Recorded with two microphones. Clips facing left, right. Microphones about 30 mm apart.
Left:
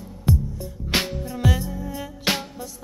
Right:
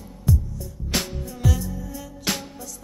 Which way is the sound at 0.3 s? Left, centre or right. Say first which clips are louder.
Left 2 dB; left.